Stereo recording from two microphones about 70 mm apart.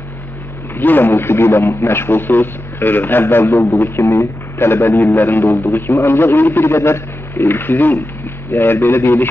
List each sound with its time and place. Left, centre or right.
0.7 s a man's voice: left